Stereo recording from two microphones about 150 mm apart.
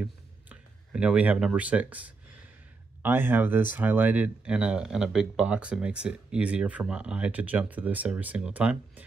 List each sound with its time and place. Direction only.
0.0 s clicking: 5° right (ahead or behind)
3.0 s speech: 15° right (ahead or behind)